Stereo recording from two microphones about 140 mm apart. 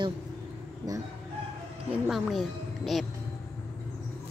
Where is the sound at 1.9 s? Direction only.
Centre (ahead or behind).